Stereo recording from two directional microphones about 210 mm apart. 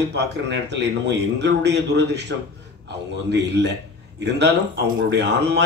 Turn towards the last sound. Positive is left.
turn(degrees=-55)  # may be behind; listen again after turning